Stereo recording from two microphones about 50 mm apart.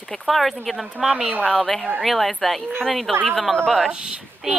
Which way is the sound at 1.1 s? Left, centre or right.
Right.